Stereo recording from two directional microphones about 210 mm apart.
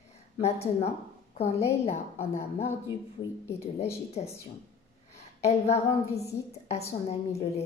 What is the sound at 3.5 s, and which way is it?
A woman's voice, 30° left (ahead or behind).